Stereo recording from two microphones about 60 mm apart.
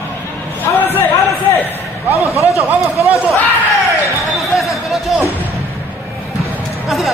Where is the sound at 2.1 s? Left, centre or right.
Left.